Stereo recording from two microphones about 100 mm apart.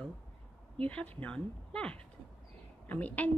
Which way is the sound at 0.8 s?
15° left (ahead or behind).